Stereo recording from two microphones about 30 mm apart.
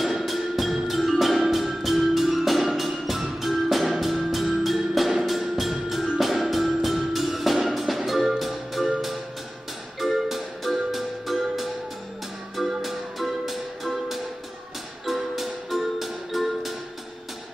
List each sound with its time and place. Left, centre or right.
0.2 s music: centre
12.8 s music: centre